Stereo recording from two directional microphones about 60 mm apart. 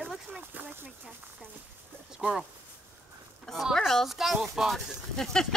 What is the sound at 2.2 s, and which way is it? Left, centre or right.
Speech, centre.